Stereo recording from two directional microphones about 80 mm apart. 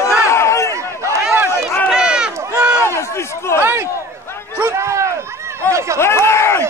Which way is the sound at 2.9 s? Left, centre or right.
Left.